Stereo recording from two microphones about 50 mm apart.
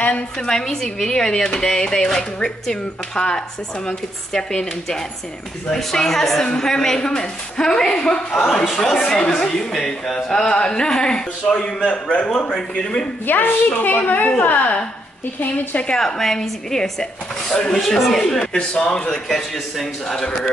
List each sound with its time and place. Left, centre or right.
0.5 s a woman's voice: centre
13.3 s a woman's voice: left
16.0 s a woman's voice: centre
18.4 s a man's voice: centre
19.2 s a woman's voice: centre
20.2 s a man's voice: centre